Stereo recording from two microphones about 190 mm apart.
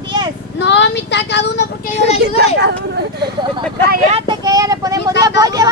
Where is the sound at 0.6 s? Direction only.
65° left (ahead or behind).